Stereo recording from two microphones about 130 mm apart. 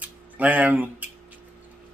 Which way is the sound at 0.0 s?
10° right (ahead or behind).